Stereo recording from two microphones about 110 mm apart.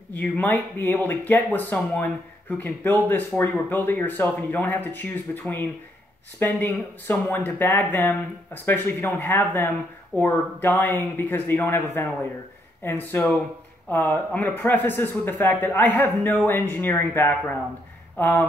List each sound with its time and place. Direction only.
0.1 s speech: 15° left (ahead or behind)
6.4 s speech: 15° left (ahead or behind)